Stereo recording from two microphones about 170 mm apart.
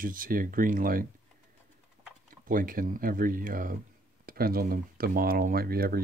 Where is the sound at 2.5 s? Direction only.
55° right (ahead or behind).